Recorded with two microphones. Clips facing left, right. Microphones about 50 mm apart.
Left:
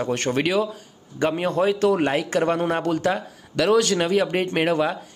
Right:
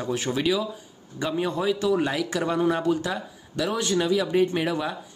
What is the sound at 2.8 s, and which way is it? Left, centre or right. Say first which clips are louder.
Speech: left 3 dB; left.